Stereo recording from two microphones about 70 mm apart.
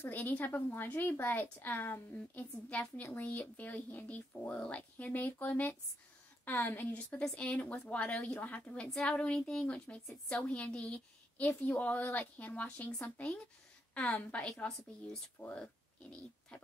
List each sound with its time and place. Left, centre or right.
0.1 s a woman's voice: left